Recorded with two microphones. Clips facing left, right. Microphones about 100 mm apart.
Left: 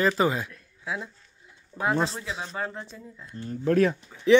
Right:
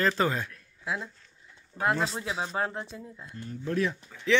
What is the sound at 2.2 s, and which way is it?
Speech, 20° right (ahead or behind).